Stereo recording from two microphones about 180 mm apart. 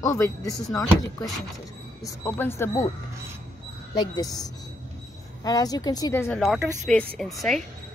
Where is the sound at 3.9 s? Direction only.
20° left (ahead or behind).